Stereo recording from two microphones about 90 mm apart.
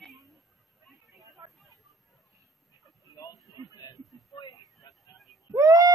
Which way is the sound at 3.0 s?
35° left (ahead or behind).